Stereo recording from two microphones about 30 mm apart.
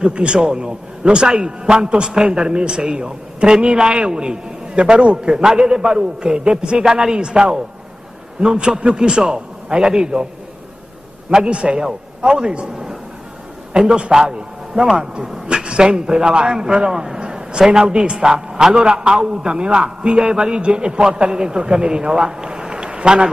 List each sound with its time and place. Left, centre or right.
0.0 s a man's voice: right
6.8 s a man's voice: right
11.2 s a man's voice: right
14.7 s speech: right
15.4 s a man's voice: right
17.2 s a sound: right
17.7 s a man's voice: right